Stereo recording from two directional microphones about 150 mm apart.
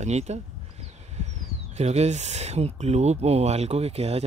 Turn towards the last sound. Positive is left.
turn(degrees=-45)  # may be behind; listen again after turning